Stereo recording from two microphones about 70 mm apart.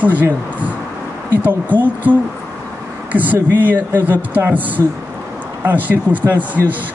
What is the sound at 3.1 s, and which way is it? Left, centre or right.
Speech, right.